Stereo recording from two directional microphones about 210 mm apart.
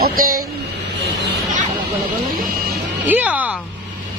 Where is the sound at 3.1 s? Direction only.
5° right (ahead or behind).